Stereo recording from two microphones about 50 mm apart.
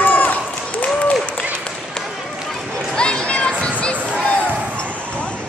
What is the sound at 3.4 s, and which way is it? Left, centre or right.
Music, left.